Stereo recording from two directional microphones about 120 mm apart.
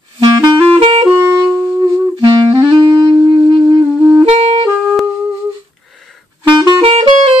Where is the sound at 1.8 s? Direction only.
30° right (ahead or behind).